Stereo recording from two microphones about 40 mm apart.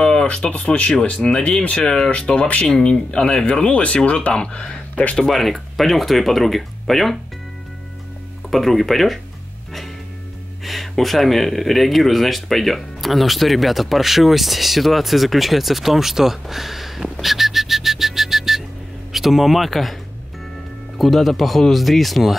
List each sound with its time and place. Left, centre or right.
0.0 s a sound: centre
0.3 s speech: left
1.8 s speech: centre; by 2.7 s left
2.7 s speech: left
5.2 s speech: centre
8.5 s speech: centre
10.6 s speech: centre
21.0 s speech: centre